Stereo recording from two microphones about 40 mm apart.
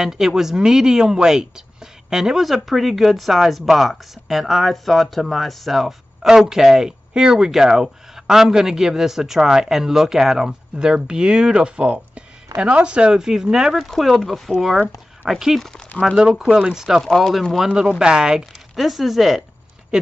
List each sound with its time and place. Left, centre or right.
0.0 s speech: centre
2.4 s speech: centre; by 13.1 s right
13.1 s speech: centre
13.8 s speech: centre
17.1 s speech: centre
17.7 s speech: centre
18.4 s speech: centre